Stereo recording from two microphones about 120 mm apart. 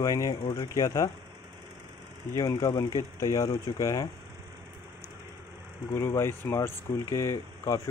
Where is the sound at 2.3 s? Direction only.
30° left (ahead or behind).